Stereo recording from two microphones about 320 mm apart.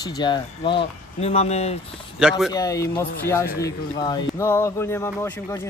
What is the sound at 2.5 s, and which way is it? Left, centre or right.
Speech, centre.